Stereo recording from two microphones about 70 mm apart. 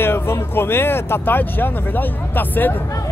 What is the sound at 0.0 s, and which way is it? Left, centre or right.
Speech, left.